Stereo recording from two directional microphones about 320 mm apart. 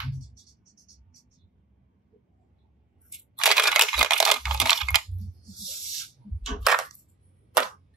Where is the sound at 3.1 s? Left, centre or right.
Centre.